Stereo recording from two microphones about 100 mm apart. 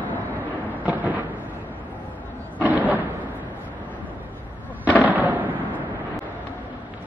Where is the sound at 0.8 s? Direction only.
15° right (ahead or behind).